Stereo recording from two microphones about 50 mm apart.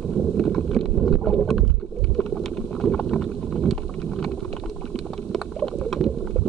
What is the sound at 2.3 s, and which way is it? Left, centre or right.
Clip-clop, centre.